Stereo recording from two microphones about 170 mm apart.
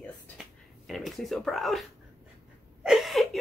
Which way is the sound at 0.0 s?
Centre (ahead or behind).